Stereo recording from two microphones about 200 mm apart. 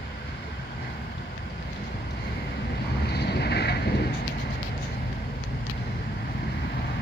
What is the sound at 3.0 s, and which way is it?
Vehicle, 55° left (ahead or behind).